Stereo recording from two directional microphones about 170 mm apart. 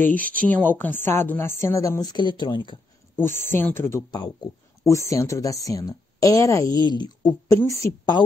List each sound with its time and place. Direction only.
0.0 s a woman's voice: 10° left (ahead or behind); by 2.8 s 30° left (ahead or behind)
3.2 s a woman's voice: 15° left (ahead or behind)